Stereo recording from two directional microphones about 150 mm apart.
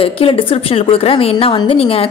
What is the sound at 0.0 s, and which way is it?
A woman's voice, 35° left (ahead or behind).